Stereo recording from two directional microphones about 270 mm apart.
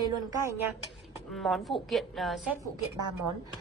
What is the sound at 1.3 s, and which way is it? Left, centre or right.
A woman's voice, centre.